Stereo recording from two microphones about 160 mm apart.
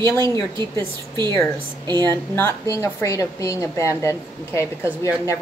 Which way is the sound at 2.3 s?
15° left (ahead or behind).